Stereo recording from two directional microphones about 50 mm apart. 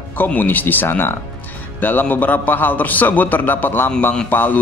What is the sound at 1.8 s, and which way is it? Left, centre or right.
A man's voice, left.